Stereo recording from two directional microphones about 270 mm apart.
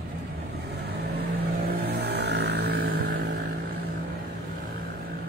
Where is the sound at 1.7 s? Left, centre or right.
Right.